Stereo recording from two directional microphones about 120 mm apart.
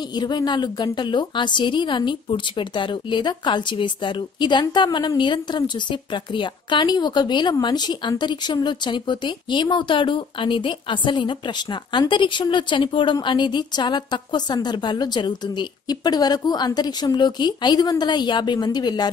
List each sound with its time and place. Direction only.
0.1 s speech: 35° left (ahead or behind)